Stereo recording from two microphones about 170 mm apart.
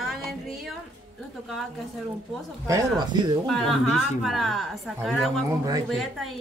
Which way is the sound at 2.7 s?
20° right (ahead or behind).